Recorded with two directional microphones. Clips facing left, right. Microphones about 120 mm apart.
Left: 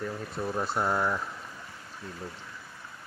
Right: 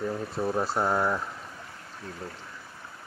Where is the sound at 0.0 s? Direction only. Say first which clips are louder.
Right 4 dB; 15° right (ahead or behind).